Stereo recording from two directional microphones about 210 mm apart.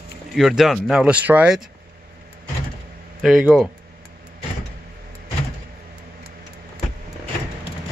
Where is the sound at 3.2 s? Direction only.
Centre (ahead or behind).